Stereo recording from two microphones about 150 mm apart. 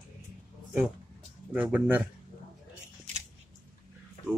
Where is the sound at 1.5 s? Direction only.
10° right (ahead or behind).